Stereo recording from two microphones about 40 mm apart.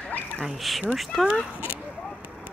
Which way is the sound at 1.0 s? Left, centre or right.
Centre.